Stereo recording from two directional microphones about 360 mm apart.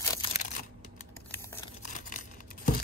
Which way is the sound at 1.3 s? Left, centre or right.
Centre.